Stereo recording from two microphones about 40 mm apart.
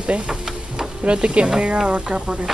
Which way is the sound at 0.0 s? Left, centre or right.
Right.